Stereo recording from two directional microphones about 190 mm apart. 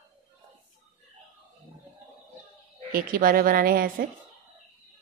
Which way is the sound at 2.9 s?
50° right (ahead or behind).